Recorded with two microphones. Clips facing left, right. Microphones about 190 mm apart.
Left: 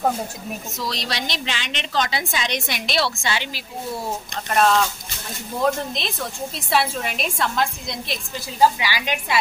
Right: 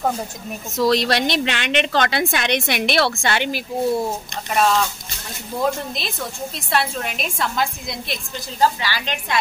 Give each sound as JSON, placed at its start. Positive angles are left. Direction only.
{"t": 0.7, "sound": "a woman's voice", "side_deg": -55}
{"t": 4.5, "sound": "a woman's voice", "side_deg": 0}
{"t": 8.5, "sound": "a woman's voice", "side_deg": 10}